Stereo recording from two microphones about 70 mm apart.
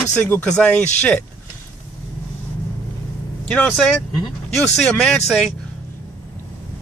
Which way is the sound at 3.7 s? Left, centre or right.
Centre.